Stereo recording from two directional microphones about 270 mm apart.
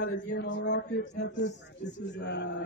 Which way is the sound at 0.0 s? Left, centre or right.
Left.